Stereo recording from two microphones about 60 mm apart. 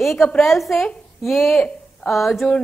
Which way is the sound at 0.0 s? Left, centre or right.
Centre.